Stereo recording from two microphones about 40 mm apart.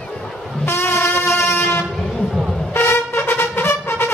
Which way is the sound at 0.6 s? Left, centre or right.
Left.